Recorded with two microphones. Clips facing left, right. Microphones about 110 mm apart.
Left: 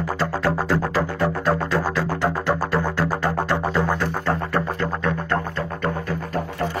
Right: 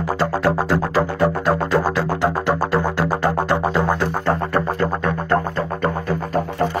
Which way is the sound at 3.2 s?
15° right (ahead or behind).